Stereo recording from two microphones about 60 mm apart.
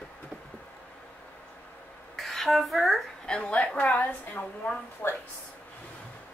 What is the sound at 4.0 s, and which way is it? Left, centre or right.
A woman's voice, left.